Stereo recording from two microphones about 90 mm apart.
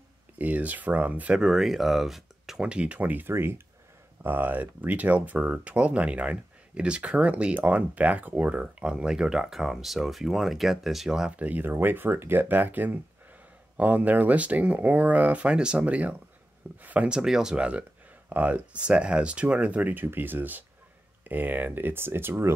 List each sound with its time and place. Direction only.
0.4 s speech: 15° right (ahead or behind)